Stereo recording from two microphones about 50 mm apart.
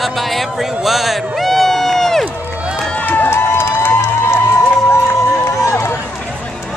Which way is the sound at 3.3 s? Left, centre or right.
Left.